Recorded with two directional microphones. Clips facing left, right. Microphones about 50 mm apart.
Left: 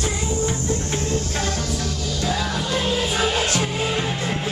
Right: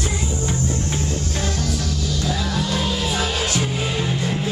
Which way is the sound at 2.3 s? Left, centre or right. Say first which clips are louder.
Left 1 dB; centre.